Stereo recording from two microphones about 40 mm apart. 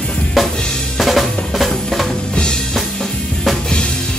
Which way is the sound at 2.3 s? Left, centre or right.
Centre.